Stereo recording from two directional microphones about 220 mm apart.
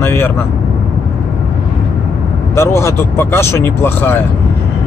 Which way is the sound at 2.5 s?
10° left (ahead or behind).